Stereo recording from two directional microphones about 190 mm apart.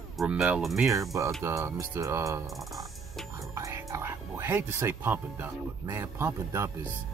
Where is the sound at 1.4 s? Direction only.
15° right (ahead or behind).